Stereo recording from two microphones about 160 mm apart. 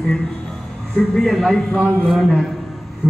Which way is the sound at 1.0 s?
Centre (ahead or behind).